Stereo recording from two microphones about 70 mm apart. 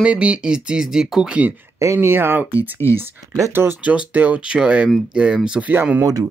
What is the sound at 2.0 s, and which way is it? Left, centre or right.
Speech, right.